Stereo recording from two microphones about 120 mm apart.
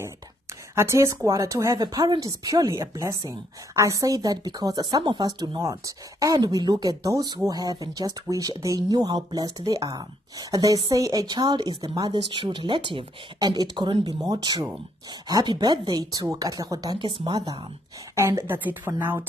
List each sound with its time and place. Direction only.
0.7 s a woman's voice: 25° right (ahead or behind); by 17.4 s 40° right (ahead or behind)
18.1 s a woman's voice: 20° right (ahead or behind)